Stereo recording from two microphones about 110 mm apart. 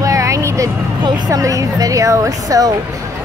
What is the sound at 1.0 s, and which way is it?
Speech, 45° right (ahead or behind).